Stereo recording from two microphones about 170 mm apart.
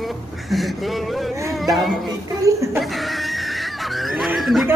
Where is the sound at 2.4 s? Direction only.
15° right (ahead or behind).